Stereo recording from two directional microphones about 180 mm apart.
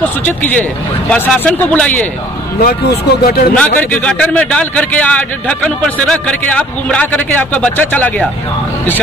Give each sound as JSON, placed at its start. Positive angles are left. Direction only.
{"t": 0.0, "sound": "a man's voice", "side_deg": 10}
{"t": 2.6, "sound": "speech", "side_deg": 60}
{"t": 3.5, "sound": "a man's voice", "side_deg": 5}